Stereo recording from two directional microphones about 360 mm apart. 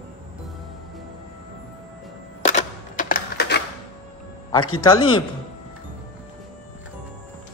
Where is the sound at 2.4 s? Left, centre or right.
Left.